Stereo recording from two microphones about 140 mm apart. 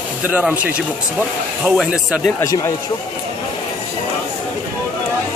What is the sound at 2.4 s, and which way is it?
Speech, 25° left (ahead or behind).